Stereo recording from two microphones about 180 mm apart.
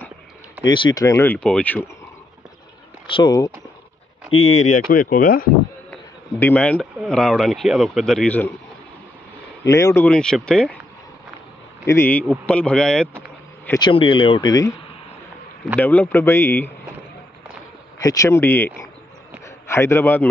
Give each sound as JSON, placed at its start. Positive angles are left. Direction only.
{"t": 0.7, "sound": "speech", "side_deg": 25}
{"t": 3.1, "sound": "speech", "side_deg": 25}
{"t": 4.4, "sound": "speech", "side_deg": 40}
{"t": 6.4, "sound": "speech", "side_deg": 10}
{"t": 9.7, "sound": "speech", "side_deg": 15}
{"t": 11.8, "sound": "speech", "side_deg": 15}
{"t": 13.7, "sound": "speech", "side_deg": 25}
{"t": 15.8, "sound": "speech", "side_deg": 10}
{"t": 18.0, "sound": "speech", "side_deg": 20}